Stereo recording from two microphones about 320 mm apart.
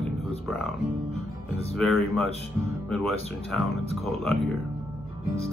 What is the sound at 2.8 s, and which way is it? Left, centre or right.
Speech, centre.